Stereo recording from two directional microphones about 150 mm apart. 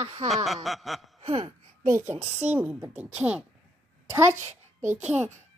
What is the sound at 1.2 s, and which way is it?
Speech, 40° right (ahead or behind).